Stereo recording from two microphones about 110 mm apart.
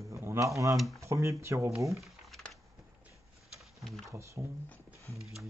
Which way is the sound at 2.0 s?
Centre (ahead or behind).